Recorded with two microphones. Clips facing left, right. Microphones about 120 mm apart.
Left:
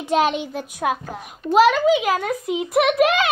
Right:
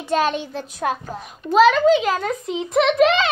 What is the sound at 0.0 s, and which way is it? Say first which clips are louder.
A child's voice: left 1 dB; 15° left (ahead or behind).